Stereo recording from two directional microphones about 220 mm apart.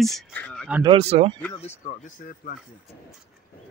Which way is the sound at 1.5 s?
30° left (ahead or behind).